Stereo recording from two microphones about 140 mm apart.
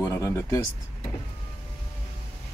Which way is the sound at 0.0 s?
20° left (ahead or behind).